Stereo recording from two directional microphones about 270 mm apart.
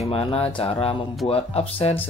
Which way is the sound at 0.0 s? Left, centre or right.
Left.